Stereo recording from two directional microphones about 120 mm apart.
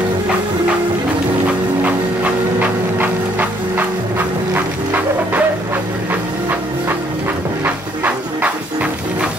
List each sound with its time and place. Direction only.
2.6 s a sound: 15° right (ahead or behind)
4.6 s music: 15° right (ahead or behind)
7.6 s music: 15° right (ahead or behind)